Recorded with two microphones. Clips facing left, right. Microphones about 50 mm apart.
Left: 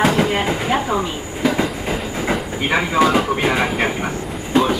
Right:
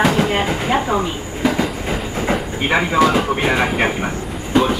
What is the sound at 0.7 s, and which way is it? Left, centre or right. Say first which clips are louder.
Speech: right 1 dB; centre.